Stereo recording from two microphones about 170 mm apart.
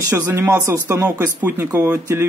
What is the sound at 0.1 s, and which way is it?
Speech, 10° right (ahead or behind).